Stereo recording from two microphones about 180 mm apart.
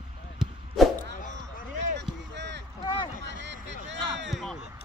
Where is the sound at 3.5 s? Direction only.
80° right.